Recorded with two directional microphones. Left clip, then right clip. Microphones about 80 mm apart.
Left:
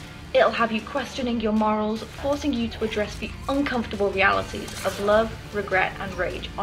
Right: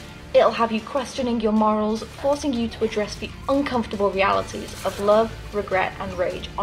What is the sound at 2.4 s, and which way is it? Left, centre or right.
A woman's voice, right.